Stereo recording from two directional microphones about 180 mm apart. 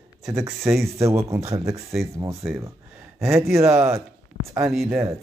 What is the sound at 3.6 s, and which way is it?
Speech, 15° right (ahead or behind).